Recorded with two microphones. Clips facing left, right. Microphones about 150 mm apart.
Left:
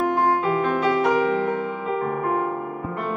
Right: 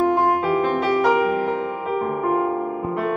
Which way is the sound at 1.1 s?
15° right (ahead or behind).